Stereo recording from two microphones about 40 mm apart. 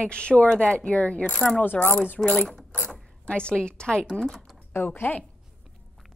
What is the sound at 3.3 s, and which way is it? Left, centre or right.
Speech, left.